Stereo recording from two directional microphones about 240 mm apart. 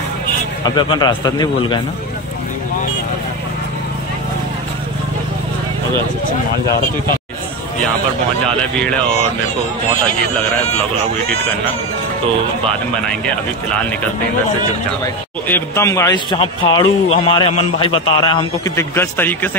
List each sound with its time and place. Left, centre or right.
0.7 s speech: centre
15.4 s speech: centre